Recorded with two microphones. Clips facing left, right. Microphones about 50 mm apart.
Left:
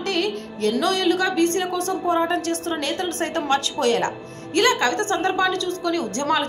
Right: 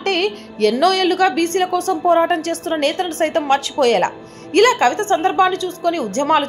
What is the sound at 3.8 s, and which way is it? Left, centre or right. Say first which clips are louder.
A woman's voice: right 6 dB; right.